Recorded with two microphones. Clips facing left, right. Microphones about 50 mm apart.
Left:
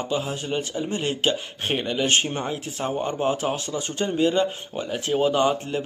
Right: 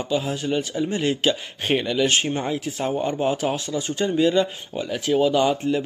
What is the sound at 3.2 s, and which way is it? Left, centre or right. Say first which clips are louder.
Speech: right 1 dB; left.